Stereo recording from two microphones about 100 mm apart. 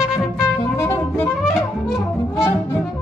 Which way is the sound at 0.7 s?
25° left (ahead or behind).